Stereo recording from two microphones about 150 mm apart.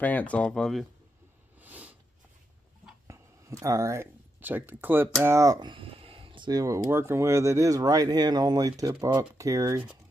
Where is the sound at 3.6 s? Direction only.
20° right (ahead or behind).